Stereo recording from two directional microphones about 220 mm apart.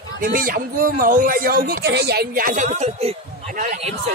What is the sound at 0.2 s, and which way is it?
Speech, 40° right (ahead or behind).